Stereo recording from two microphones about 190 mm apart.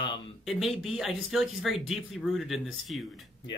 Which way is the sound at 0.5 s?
Centre (ahead or behind).